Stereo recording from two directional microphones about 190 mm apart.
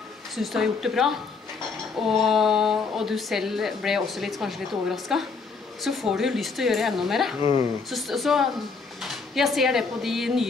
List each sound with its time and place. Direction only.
0.4 s a woman's voice: centre (ahead or behind)